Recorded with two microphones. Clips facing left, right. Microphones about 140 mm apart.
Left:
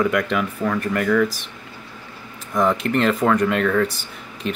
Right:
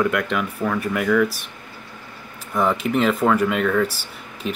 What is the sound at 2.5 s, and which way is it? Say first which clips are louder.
Speech: left 1 dB; 5° right (ahead or behind).